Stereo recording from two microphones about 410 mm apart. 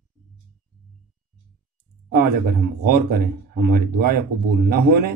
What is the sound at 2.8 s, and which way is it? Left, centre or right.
A man's voice, right.